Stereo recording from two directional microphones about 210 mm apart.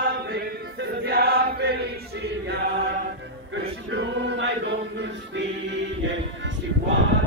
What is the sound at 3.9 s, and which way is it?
Choir, 55° right (ahead or behind).